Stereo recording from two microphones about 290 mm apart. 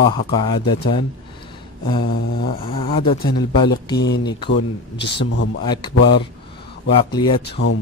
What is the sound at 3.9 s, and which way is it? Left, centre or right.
Speech, left.